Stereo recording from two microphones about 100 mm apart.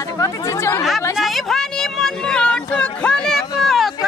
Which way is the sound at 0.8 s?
Centre (ahead or behind).